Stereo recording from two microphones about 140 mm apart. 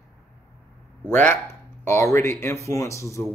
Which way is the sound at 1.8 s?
20° left (ahead or behind).